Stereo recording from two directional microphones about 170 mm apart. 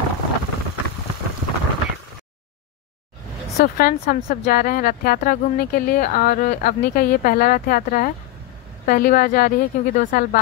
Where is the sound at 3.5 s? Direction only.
60° left (ahead or behind).